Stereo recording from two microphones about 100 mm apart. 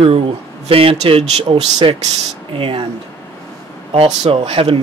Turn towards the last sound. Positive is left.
turn(degrees=-65)  # may be behind; listen again after turning